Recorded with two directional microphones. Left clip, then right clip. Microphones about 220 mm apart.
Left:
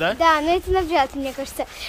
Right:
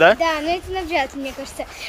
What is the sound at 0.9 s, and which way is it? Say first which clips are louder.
Speech: left 2 dB; 5° left (ahead or behind).